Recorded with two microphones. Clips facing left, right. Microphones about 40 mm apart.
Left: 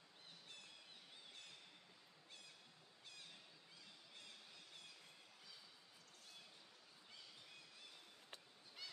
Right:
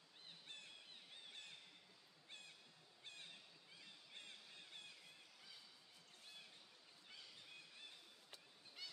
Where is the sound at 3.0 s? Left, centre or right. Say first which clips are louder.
Right 3 dB; right.